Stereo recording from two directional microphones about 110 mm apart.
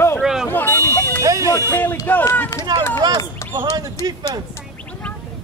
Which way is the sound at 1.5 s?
15° left (ahead or behind).